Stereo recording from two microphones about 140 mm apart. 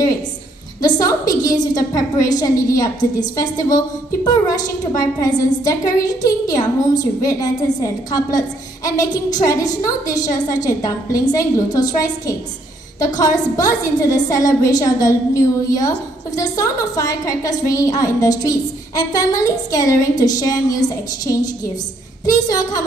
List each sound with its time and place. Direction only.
0.8 s a woman's voice: 25° left (ahead or behind)
22.5 s a woman's voice: 25° left (ahead or behind)